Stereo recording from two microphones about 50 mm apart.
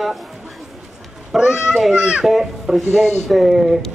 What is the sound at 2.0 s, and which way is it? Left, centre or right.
Speech, centre.